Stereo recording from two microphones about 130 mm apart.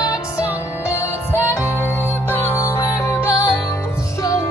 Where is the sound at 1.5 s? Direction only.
15° left (ahead or behind).